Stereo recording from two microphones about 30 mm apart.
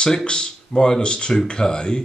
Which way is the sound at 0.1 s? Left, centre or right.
Left.